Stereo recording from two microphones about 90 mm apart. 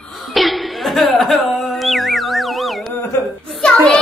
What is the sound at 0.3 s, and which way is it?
Music, centre (ahead or behind).